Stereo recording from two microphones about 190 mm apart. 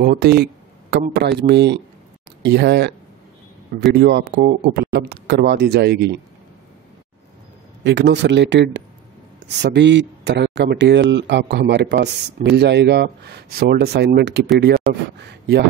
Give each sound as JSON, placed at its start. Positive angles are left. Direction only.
{"t": 0.0, "sound": "a sound", "side_deg": -55}
{"t": 1.0, "sound": "speech", "side_deg": -60}
{"t": 3.9, "sound": "speech", "side_deg": -55}
{"t": 5.1, "sound": "speech", "side_deg": -60}
{"t": 7.8, "sound": "speech", "side_deg": -70}